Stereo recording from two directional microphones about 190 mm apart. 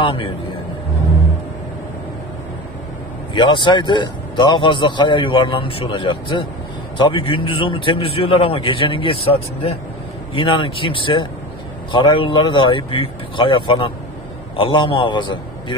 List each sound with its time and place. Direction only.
0.0 s a man's voice: 30° left (ahead or behind)
3.3 s a man's voice: 25° left (ahead or behind)